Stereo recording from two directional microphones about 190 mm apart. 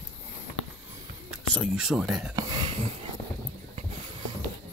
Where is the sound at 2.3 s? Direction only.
20° right (ahead or behind).